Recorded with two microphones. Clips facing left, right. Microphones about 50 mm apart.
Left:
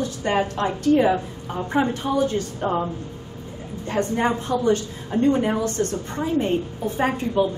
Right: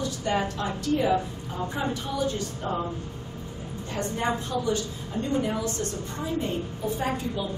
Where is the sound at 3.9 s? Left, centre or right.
Left.